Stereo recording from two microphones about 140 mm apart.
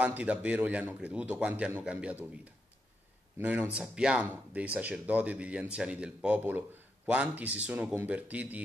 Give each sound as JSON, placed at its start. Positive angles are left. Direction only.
{"t": 0.0, "sound": "speech", "side_deg": -10}